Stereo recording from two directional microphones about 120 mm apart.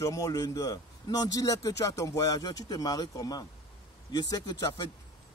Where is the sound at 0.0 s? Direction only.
30° left (ahead or behind).